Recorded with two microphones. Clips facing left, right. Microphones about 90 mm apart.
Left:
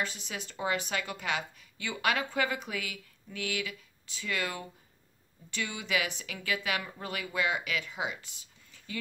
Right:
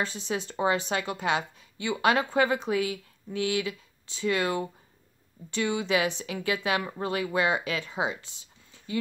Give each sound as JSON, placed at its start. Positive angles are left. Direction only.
{"t": 0.0, "sound": "a woman's voice", "side_deg": -30}